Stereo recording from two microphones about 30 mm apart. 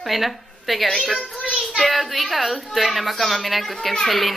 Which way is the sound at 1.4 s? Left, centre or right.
Right.